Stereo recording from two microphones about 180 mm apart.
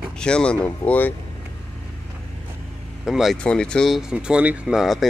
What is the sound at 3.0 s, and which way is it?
Speech, centre (ahead or behind).